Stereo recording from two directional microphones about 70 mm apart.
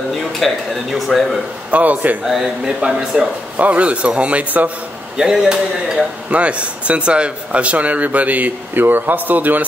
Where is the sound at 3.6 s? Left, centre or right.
Centre.